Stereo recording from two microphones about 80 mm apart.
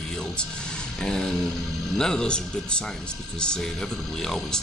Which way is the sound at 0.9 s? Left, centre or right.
Centre.